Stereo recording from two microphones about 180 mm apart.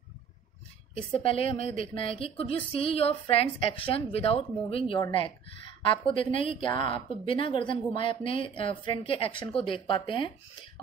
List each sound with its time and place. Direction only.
1.1 s speech: 30° left (ahead or behind)
6.0 s a woman's voice: 30° left (ahead or behind)